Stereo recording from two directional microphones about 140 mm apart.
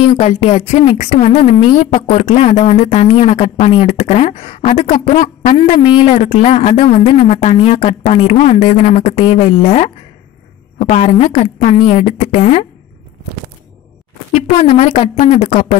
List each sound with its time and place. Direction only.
0.2 s a woman's voice: 55° left (ahead or behind)
14.3 s a woman's voice: 50° left (ahead or behind)